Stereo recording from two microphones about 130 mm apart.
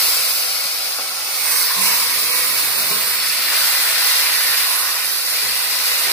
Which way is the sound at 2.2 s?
25° left (ahead or behind).